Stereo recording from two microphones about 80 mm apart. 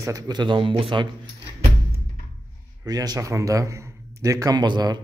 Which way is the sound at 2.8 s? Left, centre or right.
Right.